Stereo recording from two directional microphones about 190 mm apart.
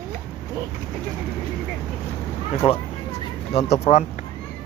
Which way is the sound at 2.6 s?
30° left (ahead or behind).